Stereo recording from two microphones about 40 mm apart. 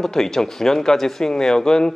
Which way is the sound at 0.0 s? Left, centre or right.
Centre.